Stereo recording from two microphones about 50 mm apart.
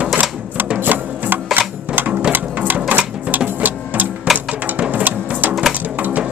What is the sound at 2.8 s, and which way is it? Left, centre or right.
Sewing machine, right.